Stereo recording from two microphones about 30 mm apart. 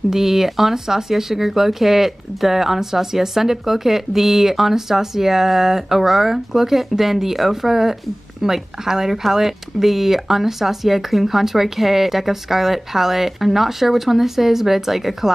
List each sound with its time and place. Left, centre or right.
0.1 s speech: centre